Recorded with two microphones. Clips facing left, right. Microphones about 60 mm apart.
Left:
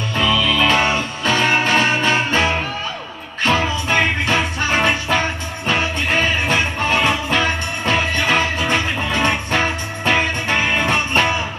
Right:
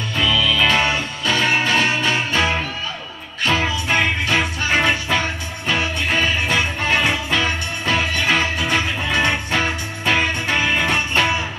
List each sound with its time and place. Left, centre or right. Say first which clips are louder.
0.1 s music: left 1 dB; left